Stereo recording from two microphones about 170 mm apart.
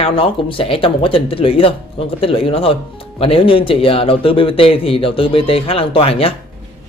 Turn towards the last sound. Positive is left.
turn(degrees=35)  # may be behind; listen again after turning